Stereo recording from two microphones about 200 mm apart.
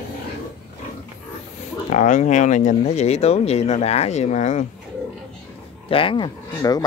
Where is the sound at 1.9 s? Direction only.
40° left (ahead or behind).